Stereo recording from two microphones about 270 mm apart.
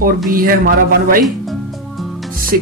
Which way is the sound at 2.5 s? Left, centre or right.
Right.